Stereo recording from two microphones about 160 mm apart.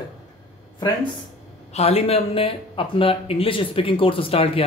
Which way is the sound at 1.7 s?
40° left (ahead or behind).